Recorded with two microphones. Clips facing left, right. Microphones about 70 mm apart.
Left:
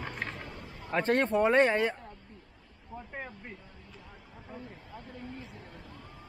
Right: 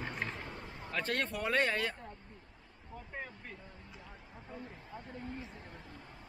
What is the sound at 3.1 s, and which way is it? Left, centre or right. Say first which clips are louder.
Speech: left 1 dB; left.